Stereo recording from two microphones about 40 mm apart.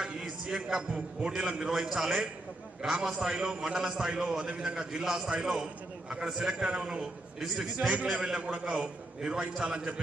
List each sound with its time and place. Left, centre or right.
0.0 s a man's voice: centre
1.6 s a man's voice: centre; by 9.9 s right